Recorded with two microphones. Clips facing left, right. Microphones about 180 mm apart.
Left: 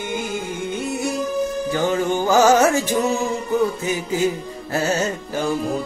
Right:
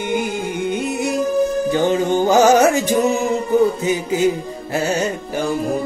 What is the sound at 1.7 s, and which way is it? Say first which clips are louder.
Music: right 3 dB; 20° right (ahead or behind).